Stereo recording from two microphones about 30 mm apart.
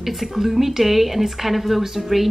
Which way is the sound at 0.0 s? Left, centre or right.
Centre.